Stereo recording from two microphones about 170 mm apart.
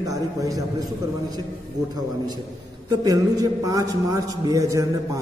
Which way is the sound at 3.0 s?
20° right (ahead or behind).